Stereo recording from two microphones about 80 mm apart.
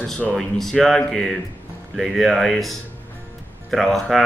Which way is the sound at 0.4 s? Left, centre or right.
Centre.